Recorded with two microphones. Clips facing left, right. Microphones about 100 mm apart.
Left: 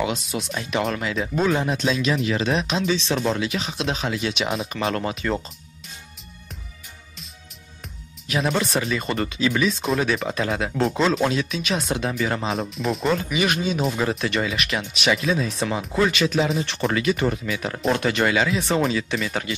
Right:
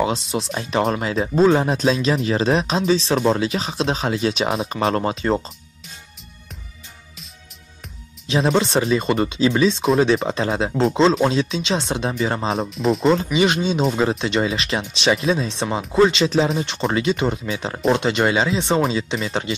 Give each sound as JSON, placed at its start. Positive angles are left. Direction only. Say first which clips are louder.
{"t": 0.0, "sound": "speech", "louder": "right 4 dB", "side_deg": -30}
{"t": 8.3, "sound": "speech", "louder": "right 4 dB", "side_deg": -25}
{"t": 12.5, "sound": "speech", "louder": "right 5 dB", "side_deg": 0}
{"t": 13.1, "sound": "speech", "louder": "right 5 dB", "side_deg": -25}